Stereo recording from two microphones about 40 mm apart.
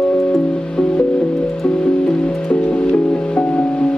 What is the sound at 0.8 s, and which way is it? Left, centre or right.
Music, left.